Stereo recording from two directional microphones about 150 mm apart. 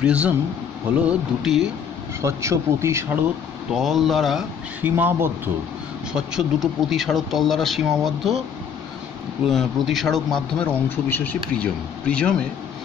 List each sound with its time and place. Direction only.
0.0 s speech: 10° right (ahead or behind)
2.2 s speech: 20° right (ahead or behind)
3.7 s speech: centre (ahead or behind)
4.8 s speech: 15° right (ahead or behind)
6.1 s speech: 5° right (ahead or behind)
9.5 s speech: centre (ahead or behind)